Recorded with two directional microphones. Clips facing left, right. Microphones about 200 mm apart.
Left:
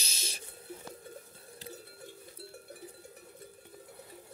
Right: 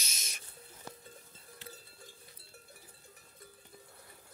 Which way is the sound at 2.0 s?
65° left (ahead or behind).